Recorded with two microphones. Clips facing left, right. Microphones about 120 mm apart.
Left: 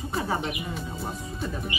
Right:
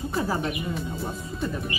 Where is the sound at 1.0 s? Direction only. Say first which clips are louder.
Right 2 dB; centre (ahead or behind).